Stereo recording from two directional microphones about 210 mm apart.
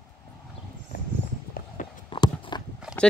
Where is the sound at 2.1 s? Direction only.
20° left (ahead or behind).